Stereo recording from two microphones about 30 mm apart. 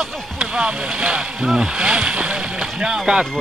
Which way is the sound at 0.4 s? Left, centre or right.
Right.